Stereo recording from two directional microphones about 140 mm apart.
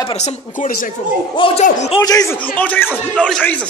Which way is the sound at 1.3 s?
35° left (ahead or behind).